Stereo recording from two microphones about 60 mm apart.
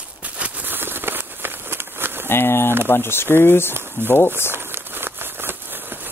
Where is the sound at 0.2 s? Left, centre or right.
Right.